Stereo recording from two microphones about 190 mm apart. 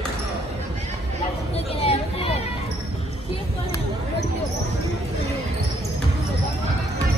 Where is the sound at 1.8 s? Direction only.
35° left (ahead or behind).